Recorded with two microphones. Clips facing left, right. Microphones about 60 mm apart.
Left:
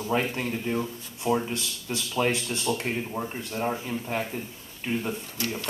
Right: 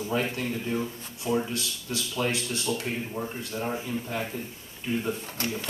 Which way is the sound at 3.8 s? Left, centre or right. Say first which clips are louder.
Left 2 dB; left.